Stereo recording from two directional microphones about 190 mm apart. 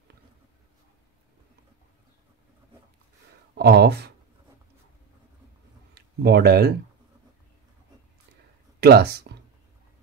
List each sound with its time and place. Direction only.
3.5 s speech: 60° right (ahead or behind)
5.9 s speech: 60° right (ahead or behind)
8.8 s speech: 55° right (ahead or behind)